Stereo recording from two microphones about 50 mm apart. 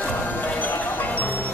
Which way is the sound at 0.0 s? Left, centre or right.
Left.